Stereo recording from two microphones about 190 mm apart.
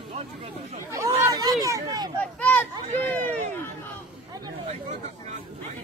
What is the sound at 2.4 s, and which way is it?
Speech, 10° left (ahead or behind).